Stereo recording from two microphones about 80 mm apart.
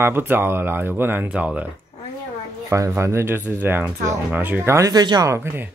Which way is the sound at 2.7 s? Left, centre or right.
Right.